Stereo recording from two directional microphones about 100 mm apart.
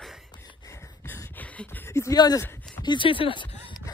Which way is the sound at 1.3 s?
15° left (ahead or behind).